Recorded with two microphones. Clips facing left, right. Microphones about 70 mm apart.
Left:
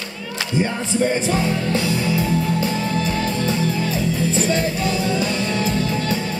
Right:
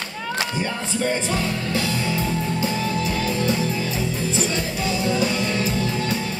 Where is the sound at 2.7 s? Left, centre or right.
Left.